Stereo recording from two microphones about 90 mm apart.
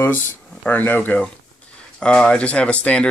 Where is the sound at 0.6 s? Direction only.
20° left (ahead or behind).